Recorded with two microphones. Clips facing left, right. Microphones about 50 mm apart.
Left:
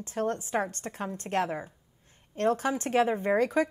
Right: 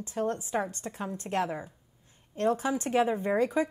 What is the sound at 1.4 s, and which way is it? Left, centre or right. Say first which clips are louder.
Speech: left 1 dB; left.